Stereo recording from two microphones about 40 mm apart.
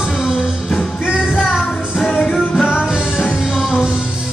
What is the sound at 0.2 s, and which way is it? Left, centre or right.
Music, centre.